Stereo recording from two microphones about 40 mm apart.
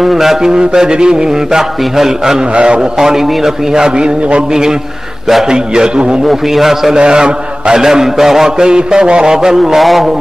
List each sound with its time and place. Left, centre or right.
0.0 s a man's voice: centre
0.5 s a man's voice: centre
2.5 s a man's voice: right
3.0 s a man's voice: centre
6.2 s a man's voice: centre
7.0 s a man's voice: right
8.6 s a man's voice: right
9.6 s a man's voice: centre